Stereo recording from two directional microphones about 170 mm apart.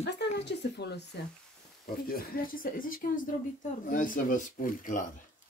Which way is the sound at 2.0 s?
55° left (ahead or behind).